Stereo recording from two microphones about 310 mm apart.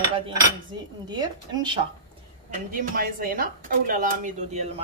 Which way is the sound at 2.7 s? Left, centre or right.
Right.